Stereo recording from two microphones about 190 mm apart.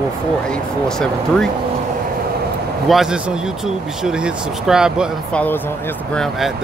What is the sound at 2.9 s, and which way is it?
Speech, 5° right (ahead or behind).